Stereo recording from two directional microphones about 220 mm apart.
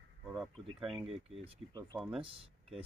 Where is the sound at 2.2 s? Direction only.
25° right (ahead or behind).